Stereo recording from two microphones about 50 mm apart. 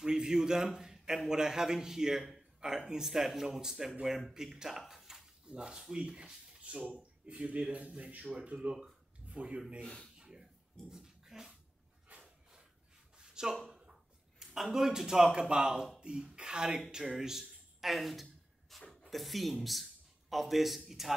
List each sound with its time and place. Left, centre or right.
0.0 s a man's voice: centre
10.1 s dog: centre
13.2 s a sound: centre
14.4 s speech: centre
16.9 s a sound: centre
19.0 s a man's voice: centre